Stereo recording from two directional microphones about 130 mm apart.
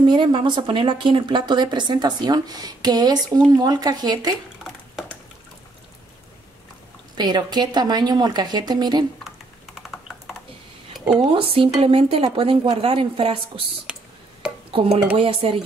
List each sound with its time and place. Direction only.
0.0 s speech: 40° right (ahead or behind)
7.2 s speech: 35° right (ahead or behind)
9.8 s computer keyboard: centre (ahead or behind)
11.1 s speech: 40° right (ahead or behind)
13.9 s tick: 5° right (ahead or behind)
14.7 s speech: 45° right (ahead or behind)